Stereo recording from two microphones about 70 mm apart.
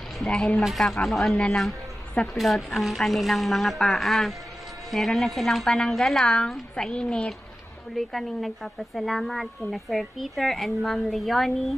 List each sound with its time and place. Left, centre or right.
0.2 s a child's voice: centre
0.7 s speech: centre
1.3 s a child's voice: centre
2.3 s a child's voice: centre
7.9 s speech: centre